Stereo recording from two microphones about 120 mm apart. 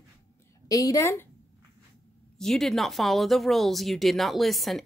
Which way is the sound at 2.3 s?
5° left (ahead or behind).